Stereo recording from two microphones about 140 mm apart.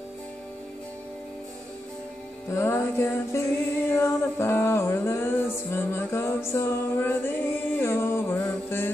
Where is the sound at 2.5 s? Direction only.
15° left (ahead or behind).